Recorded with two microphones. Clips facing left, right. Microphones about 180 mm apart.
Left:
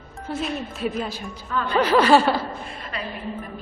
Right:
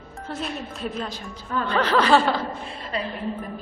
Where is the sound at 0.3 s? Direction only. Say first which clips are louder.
Left 4 dB; 5° left (ahead or behind).